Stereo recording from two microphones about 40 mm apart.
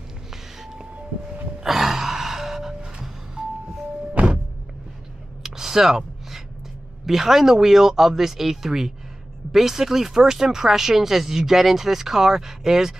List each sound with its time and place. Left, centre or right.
1.6 s music: centre
4.1 s music: right
5.4 s a sound: centre
7.1 s speech: centre